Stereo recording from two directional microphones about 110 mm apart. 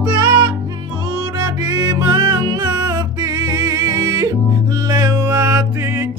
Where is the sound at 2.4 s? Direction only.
40° right (ahead or behind); by 6.1 s 20° right (ahead or behind).